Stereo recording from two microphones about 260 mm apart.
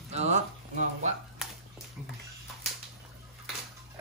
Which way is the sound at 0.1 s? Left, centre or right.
Right.